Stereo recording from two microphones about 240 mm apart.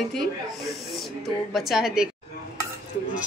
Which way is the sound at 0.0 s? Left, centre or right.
Centre.